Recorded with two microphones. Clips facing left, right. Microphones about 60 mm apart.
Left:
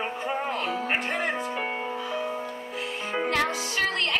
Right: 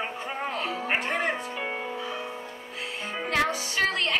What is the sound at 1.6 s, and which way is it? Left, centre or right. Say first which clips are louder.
Music: left 2 dB; left.